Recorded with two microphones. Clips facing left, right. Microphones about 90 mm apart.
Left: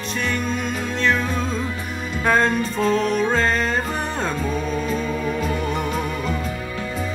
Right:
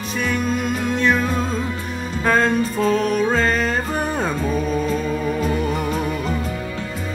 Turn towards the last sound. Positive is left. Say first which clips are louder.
# right 2 dB
turn(degrees=-45)  # may be behind; listen again after turning